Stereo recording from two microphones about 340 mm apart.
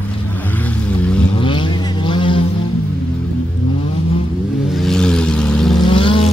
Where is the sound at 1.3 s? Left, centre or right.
Centre.